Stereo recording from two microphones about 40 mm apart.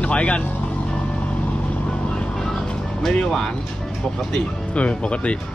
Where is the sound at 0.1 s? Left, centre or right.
Left.